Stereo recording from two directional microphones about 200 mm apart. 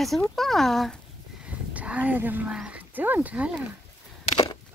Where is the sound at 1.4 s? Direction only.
5° right (ahead or behind).